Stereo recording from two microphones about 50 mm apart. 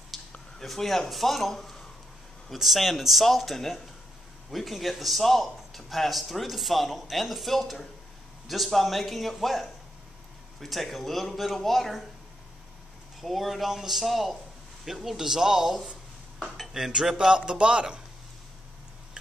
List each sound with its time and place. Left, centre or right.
0.1 s a sound: centre
0.6 s a man's voice: centre
13.2 s a man's voice: centre